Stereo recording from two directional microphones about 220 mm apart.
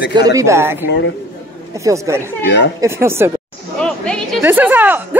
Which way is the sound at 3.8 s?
5° left (ahead or behind).